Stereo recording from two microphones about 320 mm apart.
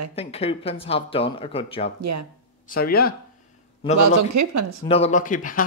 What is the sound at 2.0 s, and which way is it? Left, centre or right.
Speech, right.